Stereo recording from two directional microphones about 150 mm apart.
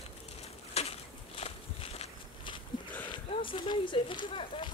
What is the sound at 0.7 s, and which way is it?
Walk, 45° left (ahead or behind).